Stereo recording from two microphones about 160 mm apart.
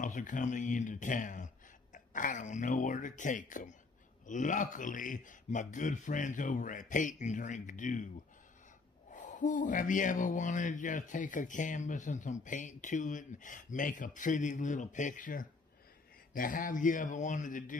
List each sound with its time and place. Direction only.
0.0 s speech: 55° left (ahead or behind)
9.1 s speech: 50° left (ahead or behind)